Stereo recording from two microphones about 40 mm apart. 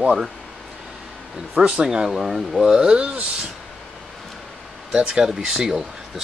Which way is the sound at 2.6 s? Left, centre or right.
Centre.